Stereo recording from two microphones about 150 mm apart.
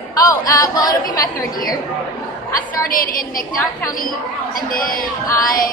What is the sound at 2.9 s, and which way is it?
Speech, 70° left (ahead or behind).